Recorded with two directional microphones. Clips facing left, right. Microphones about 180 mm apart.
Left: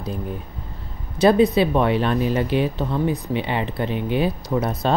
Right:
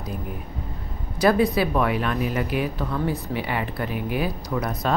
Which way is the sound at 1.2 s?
25° left (ahead or behind).